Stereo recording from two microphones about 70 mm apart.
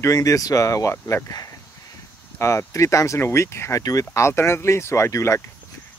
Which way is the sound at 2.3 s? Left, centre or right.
Left.